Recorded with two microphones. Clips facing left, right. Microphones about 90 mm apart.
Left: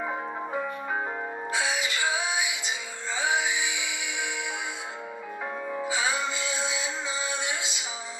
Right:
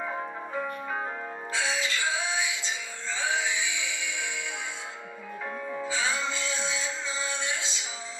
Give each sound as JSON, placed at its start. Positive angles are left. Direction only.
{"t": 0.0, "sound": "music", "side_deg": 15}
{"t": 5.7, "sound": "music", "side_deg": 15}